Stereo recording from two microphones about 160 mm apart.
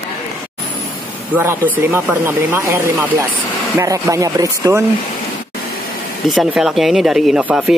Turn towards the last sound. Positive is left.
turn(degrees=-5)  # may be behind; listen again after turning